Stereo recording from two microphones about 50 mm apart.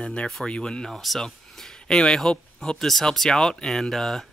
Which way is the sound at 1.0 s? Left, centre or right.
Centre.